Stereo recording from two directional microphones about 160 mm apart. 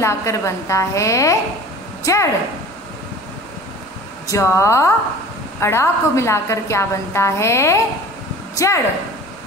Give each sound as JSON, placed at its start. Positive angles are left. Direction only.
{"t": 0.0, "sound": "a woman's voice", "side_deg": 15}
{"t": 4.3, "sound": "a woman's voice", "side_deg": 15}